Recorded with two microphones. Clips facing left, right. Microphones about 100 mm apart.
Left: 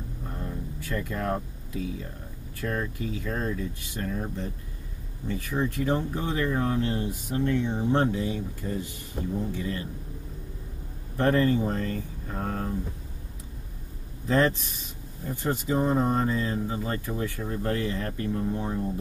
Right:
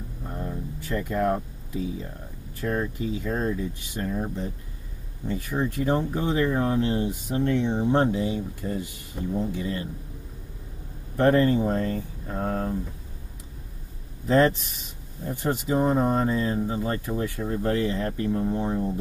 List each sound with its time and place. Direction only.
0.3 s a sound: 20° right (ahead or behind)
2.6 s speech: 20° right (ahead or behind)
11.1 s speech: 25° right (ahead or behind)
14.2 s speech: 20° right (ahead or behind)